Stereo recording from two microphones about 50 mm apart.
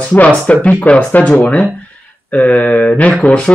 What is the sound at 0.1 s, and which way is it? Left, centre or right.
Speech, left.